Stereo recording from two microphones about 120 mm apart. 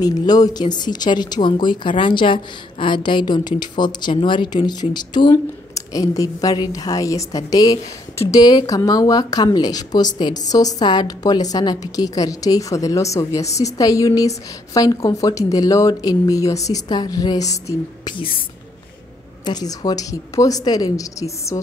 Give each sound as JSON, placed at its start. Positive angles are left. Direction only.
{"t": 0.0, "sound": "a woman's voice", "side_deg": 35}
{"t": 19.4, "sound": "speech", "side_deg": 35}